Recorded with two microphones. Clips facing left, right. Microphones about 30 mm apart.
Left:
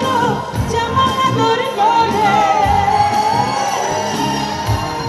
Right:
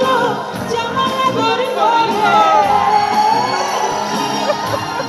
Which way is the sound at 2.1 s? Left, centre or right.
Right.